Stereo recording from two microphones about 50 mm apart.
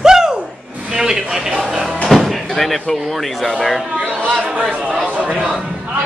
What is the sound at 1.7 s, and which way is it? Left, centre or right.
Slam, centre.